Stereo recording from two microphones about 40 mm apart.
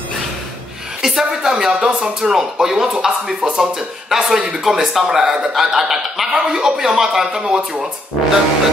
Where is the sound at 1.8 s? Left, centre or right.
Right.